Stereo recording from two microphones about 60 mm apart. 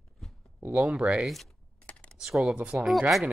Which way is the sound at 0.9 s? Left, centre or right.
Centre.